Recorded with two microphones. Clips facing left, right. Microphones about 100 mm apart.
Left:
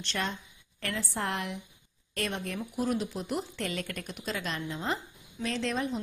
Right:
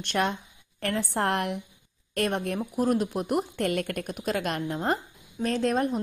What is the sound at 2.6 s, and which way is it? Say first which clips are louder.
Speech: right 5 dB; 45° right (ahead or behind).